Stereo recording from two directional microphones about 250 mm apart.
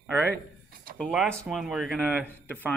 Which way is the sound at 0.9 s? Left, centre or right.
Centre.